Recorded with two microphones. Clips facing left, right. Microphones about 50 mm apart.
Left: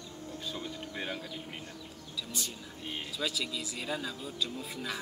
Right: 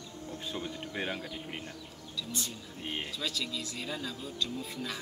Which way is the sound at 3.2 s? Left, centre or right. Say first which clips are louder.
Left 1 dB; centre.